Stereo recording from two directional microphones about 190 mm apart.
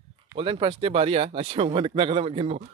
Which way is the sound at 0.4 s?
25° right (ahead or behind).